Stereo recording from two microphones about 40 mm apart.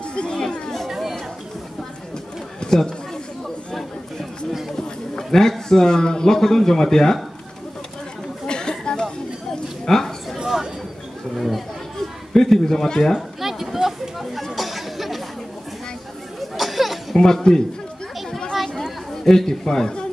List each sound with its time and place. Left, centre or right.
0.1 s chatter: left
0.8 s chatter: centre
2.6 s chatter: centre
4.7 s a man's voice: centre
8.5 s a sound: left
11.3 s chatter: centre
12.4 s speech: centre
13.4 s a sound: centre
14.5 s chatter: centre
16.3 s chatter: centre
17.1 s speech: centre
18.5 s chatter: centre